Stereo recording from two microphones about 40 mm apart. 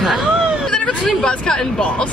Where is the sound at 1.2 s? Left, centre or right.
Centre.